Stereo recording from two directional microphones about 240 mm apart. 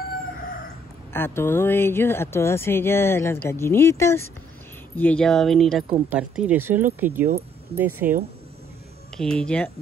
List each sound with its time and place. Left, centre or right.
1.1 s speech: centre
9.1 s speech: centre